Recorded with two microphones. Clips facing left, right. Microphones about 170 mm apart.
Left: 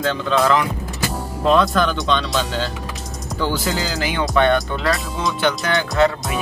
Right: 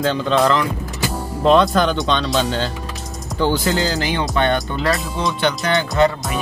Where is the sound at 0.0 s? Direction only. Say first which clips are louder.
Right 2 dB; centre (ahead or behind).